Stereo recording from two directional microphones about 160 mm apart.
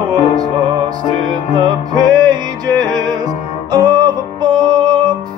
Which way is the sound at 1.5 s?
25° right (ahead or behind).